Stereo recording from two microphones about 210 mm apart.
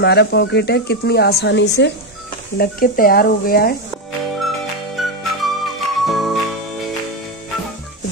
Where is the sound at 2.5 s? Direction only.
45° left (ahead or behind).